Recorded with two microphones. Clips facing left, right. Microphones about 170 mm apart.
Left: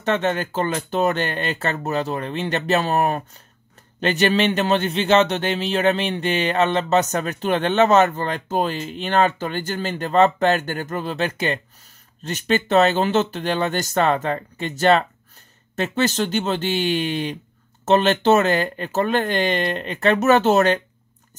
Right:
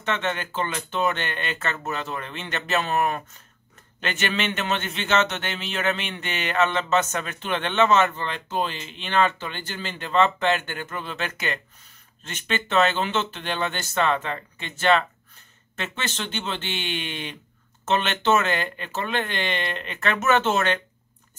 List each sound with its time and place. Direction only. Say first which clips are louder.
0.0 s a man's voice: left 6 dB; 40° left (ahead or behind)